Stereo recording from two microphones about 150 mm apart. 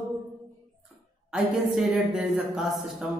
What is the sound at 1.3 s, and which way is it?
Speech, centre (ahead or behind).